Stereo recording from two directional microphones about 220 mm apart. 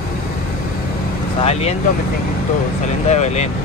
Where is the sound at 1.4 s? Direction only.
30° left (ahead or behind).